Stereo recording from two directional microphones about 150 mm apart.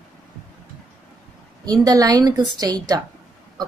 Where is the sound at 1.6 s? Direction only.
25° right (ahead or behind).